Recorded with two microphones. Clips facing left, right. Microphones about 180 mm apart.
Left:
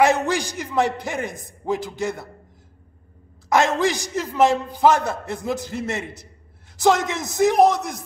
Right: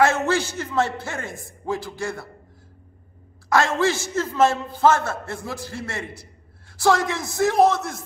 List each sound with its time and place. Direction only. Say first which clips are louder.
0.0 s a man's voice: left 1 dB; 15° left (ahead or behind)
3.4 s a man's voice: left 1 dB; 20° left (ahead or behind)